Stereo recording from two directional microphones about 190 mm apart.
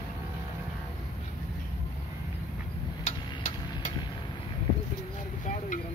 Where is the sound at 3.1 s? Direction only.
40° left (ahead or behind).